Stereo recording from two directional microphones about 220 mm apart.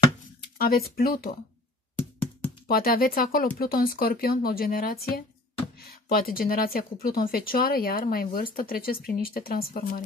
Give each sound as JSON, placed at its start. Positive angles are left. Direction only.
{"t": 0.6, "sound": "speech", "side_deg": 45}
{"t": 2.7, "sound": "speech", "side_deg": 40}